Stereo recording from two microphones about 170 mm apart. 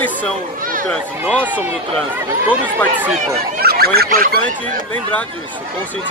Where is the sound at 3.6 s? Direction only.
65° right (ahead or behind).